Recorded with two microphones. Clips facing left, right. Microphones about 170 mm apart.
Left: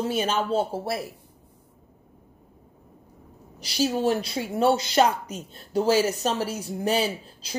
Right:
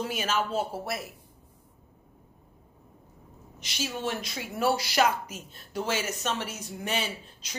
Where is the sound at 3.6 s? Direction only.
35° left (ahead or behind).